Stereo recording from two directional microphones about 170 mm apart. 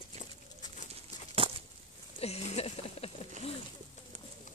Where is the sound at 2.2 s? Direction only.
35° left (ahead or behind).